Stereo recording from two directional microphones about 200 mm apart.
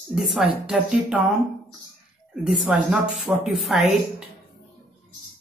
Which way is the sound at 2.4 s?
5° right (ahead or behind).